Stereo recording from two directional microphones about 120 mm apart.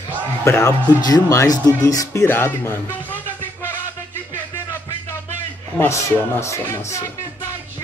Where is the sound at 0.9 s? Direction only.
30° left (ahead or behind).